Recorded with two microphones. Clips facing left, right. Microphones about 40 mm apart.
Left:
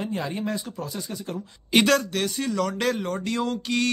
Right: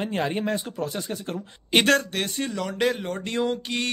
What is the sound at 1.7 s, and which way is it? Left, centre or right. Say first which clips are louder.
Speech: even; right.